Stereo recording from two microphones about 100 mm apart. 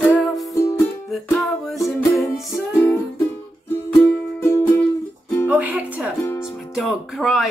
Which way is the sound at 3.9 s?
25° left (ahead or behind).